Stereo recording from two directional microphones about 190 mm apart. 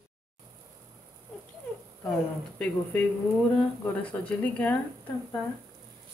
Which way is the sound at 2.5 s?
10° left (ahead or behind).